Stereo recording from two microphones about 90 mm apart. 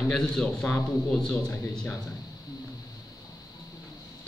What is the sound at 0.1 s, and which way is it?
A man's voice, 10° left (ahead or behind).